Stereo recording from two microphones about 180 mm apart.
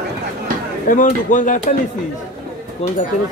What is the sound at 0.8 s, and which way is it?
Speech, 45° left (ahead or behind).